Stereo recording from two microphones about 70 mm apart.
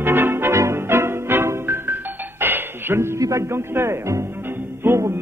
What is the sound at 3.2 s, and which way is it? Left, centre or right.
Speech, right.